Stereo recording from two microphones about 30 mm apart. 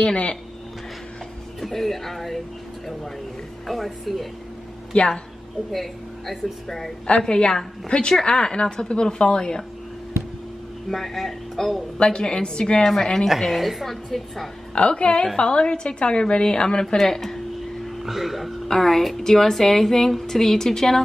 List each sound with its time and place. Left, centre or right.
1.6 s a woman's voice: centre
3.6 s a woman's voice: centre
4.9 s a woman's voice: left
5.7 s a woman's voice: centre
7.1 s a woman's voice: left
10.9 s a woman's voice: centre
12.0 s a woman's voice: left
12.8 s a woman's voice: centre
13.2 s a woman's voice: centre
14.9 s a woman's voice: left
16.8 s a woman's voice: centre
18.0 s a woman's voice: centre
18.7 s a woman's voice: centre
20.3 s a woman's voice: centre